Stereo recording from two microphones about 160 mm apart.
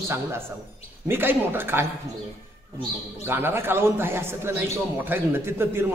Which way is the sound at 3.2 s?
15° right (ahead or behind).